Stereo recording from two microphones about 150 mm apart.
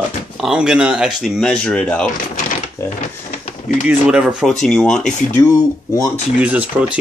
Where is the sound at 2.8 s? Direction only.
50° left (ahead or behind).